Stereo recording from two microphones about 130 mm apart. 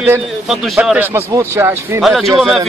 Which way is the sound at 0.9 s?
15° right (ahead or behind).